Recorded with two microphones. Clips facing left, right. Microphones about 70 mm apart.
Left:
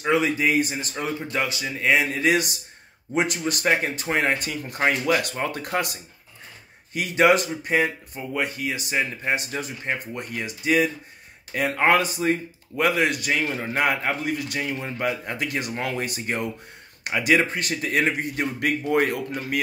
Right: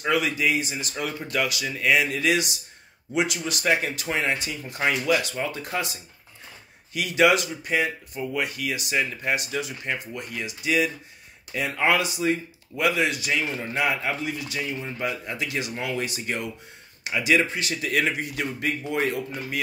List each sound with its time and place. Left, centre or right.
0.1 s speech: left
6.9 s speech: left
18.9 s speech: left